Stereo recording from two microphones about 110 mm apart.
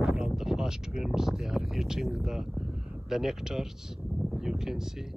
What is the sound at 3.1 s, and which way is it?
Speech, 5° right (ahead or behind).